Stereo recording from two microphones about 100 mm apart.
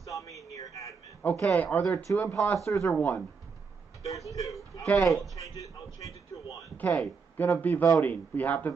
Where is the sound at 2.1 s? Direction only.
30° left (ahead or behind).